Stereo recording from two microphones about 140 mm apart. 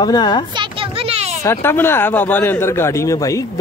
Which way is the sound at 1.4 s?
15° left (ahead or behind).